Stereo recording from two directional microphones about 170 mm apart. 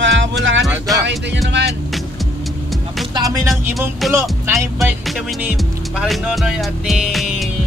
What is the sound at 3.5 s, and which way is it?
Speech, centre (ahead or behind).